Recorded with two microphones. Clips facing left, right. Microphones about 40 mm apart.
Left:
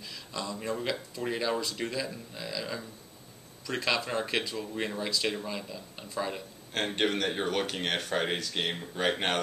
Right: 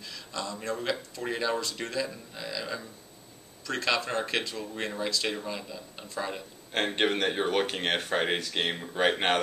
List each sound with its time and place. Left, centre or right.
0.0 s a sound: centre
1.2 s speech: centre
3.8 s speech: centre
6.7 s speech: centre